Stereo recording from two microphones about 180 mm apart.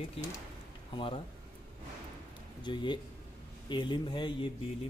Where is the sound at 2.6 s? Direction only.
25° left (ahead or behind).